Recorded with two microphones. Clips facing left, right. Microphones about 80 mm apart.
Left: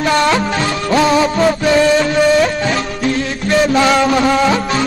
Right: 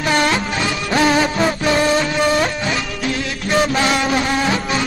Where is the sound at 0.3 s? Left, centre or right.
Left.